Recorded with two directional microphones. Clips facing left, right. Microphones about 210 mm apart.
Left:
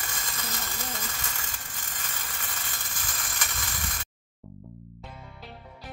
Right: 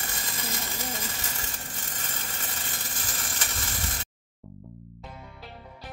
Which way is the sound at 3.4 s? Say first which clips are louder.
Right 1 dB; 25° right (ahead or behind).